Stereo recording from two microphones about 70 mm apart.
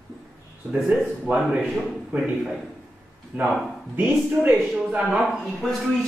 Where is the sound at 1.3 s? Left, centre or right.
Centre.